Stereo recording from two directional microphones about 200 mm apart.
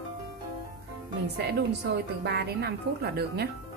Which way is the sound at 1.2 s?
55° right (ahead or behind).